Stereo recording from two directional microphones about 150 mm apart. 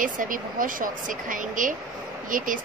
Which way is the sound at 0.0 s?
65° right (ahead or behind).